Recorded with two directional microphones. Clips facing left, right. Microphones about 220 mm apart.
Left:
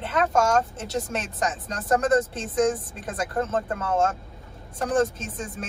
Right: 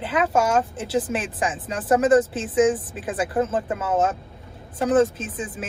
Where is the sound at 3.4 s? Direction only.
Centre (ahead or behind).